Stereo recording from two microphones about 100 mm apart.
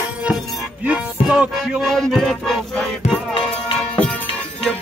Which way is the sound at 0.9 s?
10° right (ahead or behind).